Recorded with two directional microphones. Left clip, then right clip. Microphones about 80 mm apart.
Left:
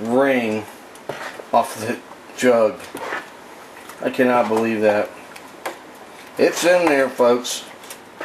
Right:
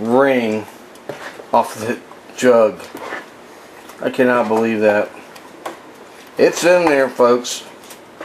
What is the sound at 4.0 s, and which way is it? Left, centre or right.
Speech, centre.